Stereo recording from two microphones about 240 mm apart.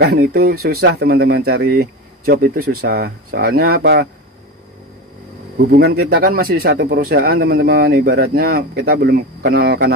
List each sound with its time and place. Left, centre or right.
0.0 s speech: right
5.7 s speech: right